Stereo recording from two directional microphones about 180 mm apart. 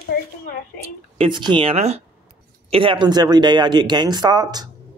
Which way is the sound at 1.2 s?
25° right (ahead or behind).